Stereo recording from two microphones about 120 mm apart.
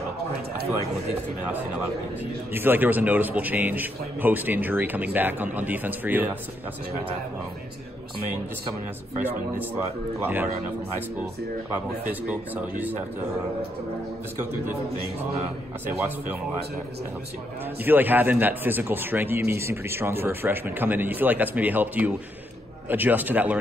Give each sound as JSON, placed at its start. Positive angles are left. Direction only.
{"t": 2.5, "sound": "a man's voice", "side_deg": -15}
{"t": 9.1, "sound": "a man's voice", "side_deg": -15}
{"t": 11.7, "sound": "a man's voice", "side_deg": -15}
{"t": 17.8, "sound": "a man's voice", "side_deg": -15}